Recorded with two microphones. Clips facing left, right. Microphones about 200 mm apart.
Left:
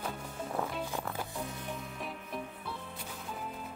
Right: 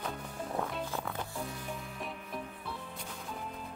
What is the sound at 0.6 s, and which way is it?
Music, 5° left (ahead or behind).